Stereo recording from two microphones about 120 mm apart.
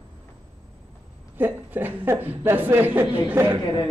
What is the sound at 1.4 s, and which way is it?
A woman's voice, 15° right (ahead or behind).